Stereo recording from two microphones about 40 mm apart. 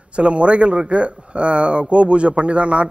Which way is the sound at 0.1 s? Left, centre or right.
Right.